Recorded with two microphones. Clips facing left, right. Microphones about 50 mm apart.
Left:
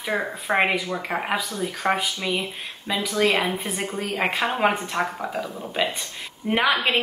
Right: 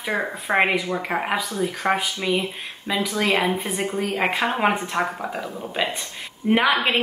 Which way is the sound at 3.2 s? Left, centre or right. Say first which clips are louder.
Right 1 dB; right.